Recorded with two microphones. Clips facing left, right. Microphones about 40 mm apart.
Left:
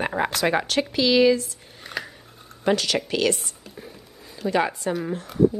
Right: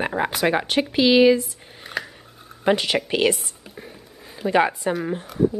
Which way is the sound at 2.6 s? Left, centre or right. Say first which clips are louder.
Right 2 dB; right.